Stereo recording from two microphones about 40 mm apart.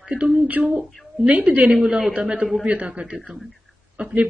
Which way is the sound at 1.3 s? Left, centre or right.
Right.